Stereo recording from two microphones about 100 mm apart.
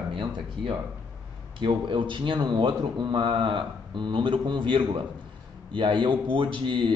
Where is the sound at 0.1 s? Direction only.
55° right (ahead or behind).